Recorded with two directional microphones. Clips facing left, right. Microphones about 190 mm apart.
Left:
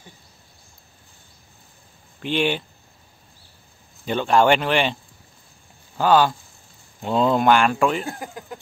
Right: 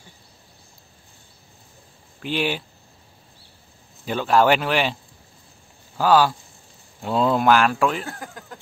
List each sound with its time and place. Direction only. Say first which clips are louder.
2.2 s speech: left 2 dB; 5° right (ahead or behind)
4.0 s speech: left 1 dB; 5° right (ahead or behind)
5.9 s speech: even; 5° right (ahead or behind)
8.0 s speech: left 3 dB; 15° left (ahead or behind)